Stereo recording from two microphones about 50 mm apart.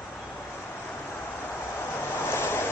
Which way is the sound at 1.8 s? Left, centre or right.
Left.